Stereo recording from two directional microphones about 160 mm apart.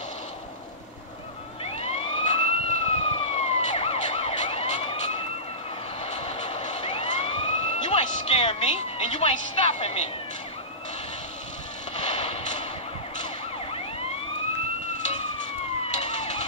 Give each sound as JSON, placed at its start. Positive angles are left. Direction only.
{"t": 1.6, "sound": "emergency vehicle", "side_deg": 40}
{"t": 12.1, "sound": "a sound", "side_deg": 45}
{"t": 15.9, "sound": "emergency vehicle", "side_deg": 45}